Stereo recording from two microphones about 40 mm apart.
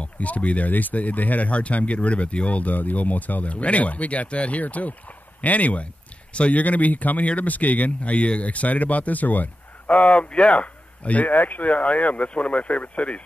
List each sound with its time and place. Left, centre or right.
0.0 s speech: left
6.6 s speech: left